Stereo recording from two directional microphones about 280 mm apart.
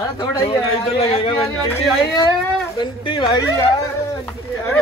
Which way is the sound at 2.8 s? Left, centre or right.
Centre.